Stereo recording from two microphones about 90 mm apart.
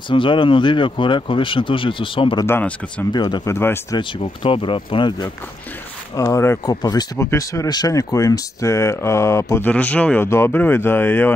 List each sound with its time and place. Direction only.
0.1 s speech: 65° left (ahead or behind)
3.1 s speech: 55° left (ahead or behind)
3.4 s speech: 30° left (ahead or behind)
4.2 s speech: 80° left; by 5.3 s 60° left (ahead or behind)
6.1 s speech: 35° left (ahead or behind)
6.6 s speech: 45° left (ahead or behind)
7.2 s speech: 35° left (ahead or behind)
9.7 s speech: 15° left (ahead or behind)
10.2 s speech: 30° left (ahead or behind)